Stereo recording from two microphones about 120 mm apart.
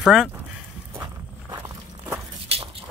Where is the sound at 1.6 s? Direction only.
25° right (ahead or behind).